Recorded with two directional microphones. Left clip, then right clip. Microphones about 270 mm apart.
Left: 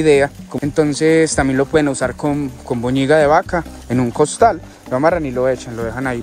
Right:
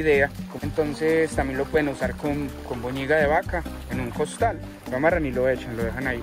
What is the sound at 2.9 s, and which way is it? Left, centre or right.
Speech, left.